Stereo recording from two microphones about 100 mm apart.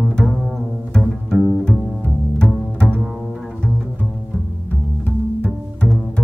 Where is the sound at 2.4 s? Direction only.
10° left (ahead or behind).